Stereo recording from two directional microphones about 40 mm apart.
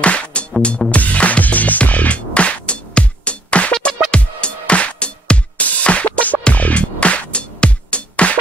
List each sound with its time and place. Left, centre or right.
0.0 s music: left
0.9 s music: left